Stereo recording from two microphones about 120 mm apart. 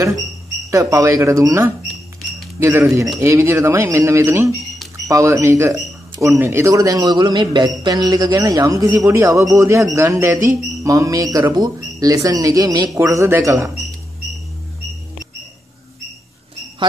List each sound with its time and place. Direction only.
0.7 s a man's voice: 25° right (ahead or behind)